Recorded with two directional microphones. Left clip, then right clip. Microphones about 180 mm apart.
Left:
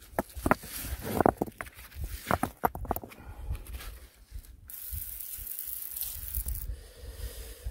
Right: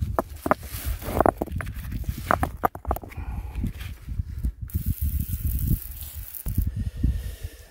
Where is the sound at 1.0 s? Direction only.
40° right (ahead or behind).